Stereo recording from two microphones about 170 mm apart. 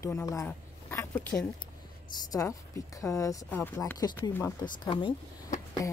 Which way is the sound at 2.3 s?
20° left (ahead or behind).